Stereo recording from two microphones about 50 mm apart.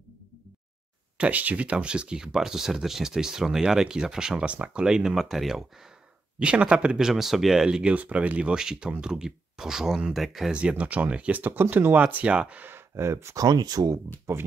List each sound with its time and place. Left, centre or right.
1.1 s speech: right; by 4.5 s centre
4.5 s speech: right
4.8 s speech: centre
6.4 s speech: right
7.9 s speech: right; by 10.5 s centre
10.5 s speech: right
12.0 s speech: right
12.6 s speech: right